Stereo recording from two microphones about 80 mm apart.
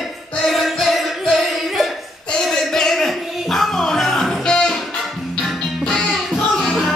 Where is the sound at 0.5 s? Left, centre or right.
Centre.